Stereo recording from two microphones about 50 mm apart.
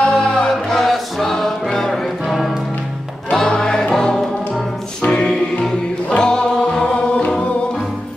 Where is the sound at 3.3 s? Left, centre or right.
Centre.